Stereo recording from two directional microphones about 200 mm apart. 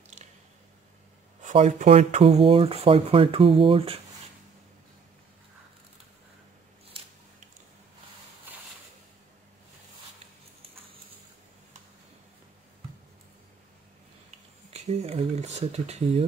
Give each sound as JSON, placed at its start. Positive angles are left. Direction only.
{"t": 0.2, "sound": "squish", "side_deg": -35}
{"t": 1.4, "sound": "speech", "side_deg": -35}
{"t": 14.7, "sound": "a sound", "side_deg": -30}